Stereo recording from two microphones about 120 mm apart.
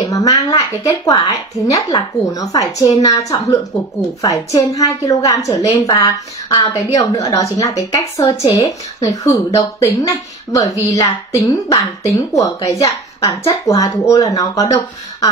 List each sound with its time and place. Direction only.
0.0 s a woman's voice: 30° left (ahead or behind)
4.6 s a woman's voice: 30° left (ahead or behind)